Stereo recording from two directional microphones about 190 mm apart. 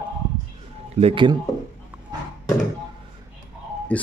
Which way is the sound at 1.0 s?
30° right (ahead or behind).